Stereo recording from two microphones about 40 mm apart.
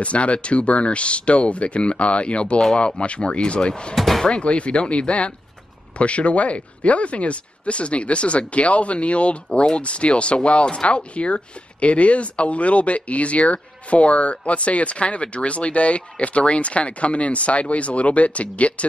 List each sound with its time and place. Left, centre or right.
0.0 s speech: left
3.9 s speech: centre
4.3 s speech: left